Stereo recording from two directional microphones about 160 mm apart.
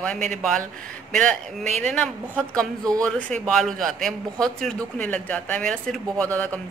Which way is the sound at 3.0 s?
5° left (ahead or behind).